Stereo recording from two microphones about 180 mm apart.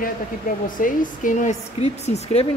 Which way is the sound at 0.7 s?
50° left (ahead or behind).